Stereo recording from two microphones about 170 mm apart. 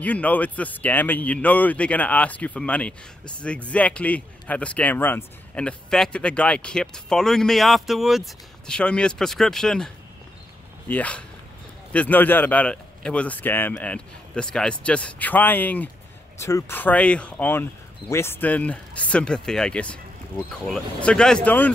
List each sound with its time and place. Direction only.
0.0 s speech: 10° left (ahead or behind)
10.9 s speech: 10° left (ahead or behind)